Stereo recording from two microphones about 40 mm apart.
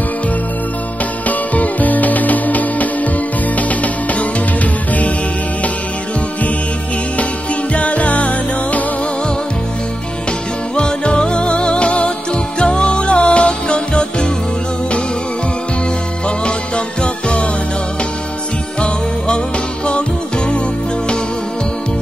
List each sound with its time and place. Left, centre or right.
1.2 s music: left
7.7 s music: left
10.8 s music: left
16.4 s music: left
18.8 s music: left